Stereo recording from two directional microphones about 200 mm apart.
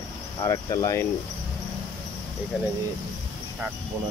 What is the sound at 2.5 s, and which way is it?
Speech, 5° right (ahead or behind).